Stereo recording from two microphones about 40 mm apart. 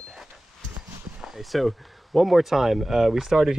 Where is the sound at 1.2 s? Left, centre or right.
Centre.